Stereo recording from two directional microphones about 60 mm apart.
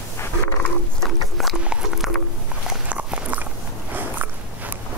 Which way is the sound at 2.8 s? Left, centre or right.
Right.